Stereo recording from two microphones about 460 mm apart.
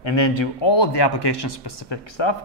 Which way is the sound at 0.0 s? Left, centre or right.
Left.